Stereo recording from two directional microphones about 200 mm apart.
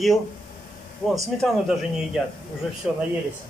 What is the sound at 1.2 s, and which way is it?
Speech, centre (ahead or behind).